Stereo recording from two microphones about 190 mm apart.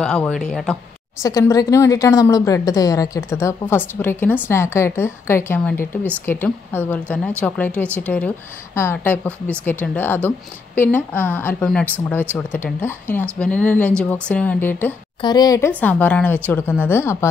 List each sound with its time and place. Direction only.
0.0 s speech: 5° left (ahead or behind)
1.2 s a woman's voice: 15° left (ahead or behind)
15.2 s a woman's voice: 20° left (ahead or behind)
15.8 s a woman's voice: 10° left (ahead or behind)